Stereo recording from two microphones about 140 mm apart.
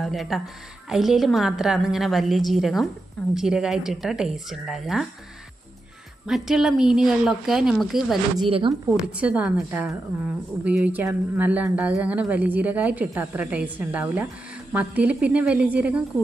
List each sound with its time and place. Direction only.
0.0 s speech: centre (ahead or behind)
6.2 s speech: 5° right (ahead or behind)
8.5 s speech: 40° right (ahead or behind)
8.8 s a woman's voice: 5° right (ahead or behind)